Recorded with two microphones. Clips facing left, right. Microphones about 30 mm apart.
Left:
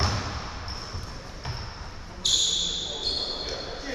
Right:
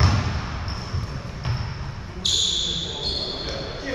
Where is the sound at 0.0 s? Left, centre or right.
Right.